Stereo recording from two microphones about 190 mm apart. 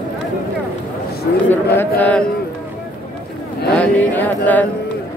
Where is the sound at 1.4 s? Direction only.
10° left (ahead or behind).